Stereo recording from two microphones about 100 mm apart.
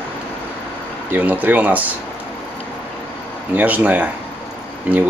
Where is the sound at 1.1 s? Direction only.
15° right (ahead or behind).